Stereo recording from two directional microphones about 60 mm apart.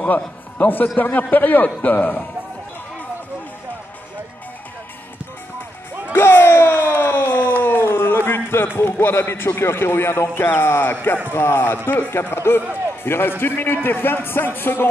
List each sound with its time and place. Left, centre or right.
0.0 s a man's voice: left
6.1 s a sound: left
9.0 s a man's voice: left